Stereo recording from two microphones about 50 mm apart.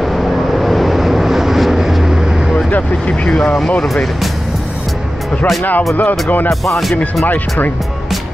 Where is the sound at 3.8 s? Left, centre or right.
Centre.